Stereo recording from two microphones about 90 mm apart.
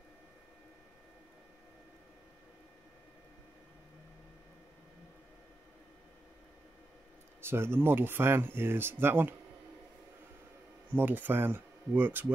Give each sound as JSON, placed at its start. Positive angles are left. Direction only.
{"t": 7.4, "sound": "speech", "side_deg": -25}
{"t": 10.9, "sound": "speech", "side_deg": -20}